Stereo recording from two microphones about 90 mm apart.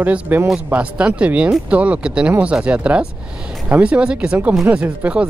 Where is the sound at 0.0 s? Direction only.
20° right (ahead or behind).